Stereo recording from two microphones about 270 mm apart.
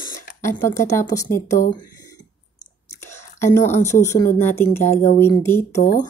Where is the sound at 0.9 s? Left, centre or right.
Centre.